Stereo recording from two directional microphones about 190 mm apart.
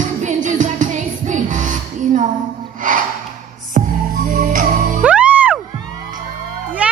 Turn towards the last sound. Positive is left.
turn(degrees=-5)  # may be behind; listen again after turning